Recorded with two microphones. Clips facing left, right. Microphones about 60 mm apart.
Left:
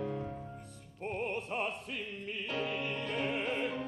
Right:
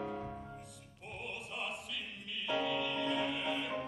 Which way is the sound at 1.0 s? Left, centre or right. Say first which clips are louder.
Left 9 dB; left.